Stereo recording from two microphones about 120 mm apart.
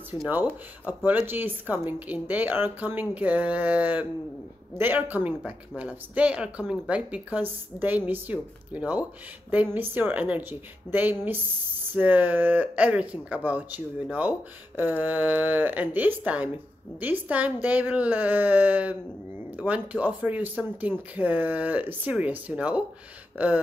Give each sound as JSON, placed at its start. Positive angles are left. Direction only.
{"t": 0.8, "sound": "speech", "side_deg": -15}
{"t": 14.8, "sound": "speech", "side_deg": -15}
{"t": 23.3, "sound": "a sound", "side_deg": -15}